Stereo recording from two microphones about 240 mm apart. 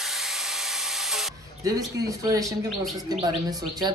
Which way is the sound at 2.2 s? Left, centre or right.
Centre.